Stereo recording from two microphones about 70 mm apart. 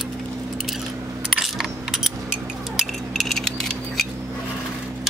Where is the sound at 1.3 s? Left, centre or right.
Centre.